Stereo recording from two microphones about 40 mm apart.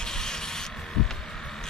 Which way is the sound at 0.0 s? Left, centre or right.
Centre.